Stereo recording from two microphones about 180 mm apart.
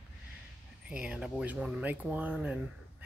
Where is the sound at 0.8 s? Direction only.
5° right (ahead or behind).